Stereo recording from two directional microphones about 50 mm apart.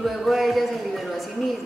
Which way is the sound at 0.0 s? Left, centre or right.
Centre.